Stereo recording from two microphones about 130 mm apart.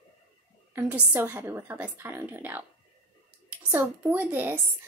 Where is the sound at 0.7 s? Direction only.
15° right (ahead or behind).